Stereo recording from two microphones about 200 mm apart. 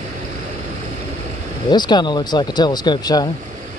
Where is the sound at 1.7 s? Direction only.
20° left (ahead or behind).